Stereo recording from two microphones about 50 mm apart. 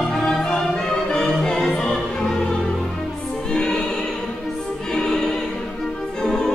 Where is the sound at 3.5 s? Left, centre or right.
Centre.